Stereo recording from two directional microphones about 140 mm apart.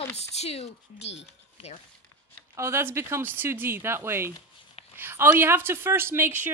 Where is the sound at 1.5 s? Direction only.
50° left (ahead or behind).